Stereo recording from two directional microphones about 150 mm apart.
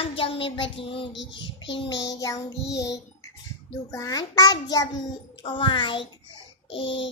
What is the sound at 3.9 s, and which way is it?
A child's voice, 25° left (ahead or behind).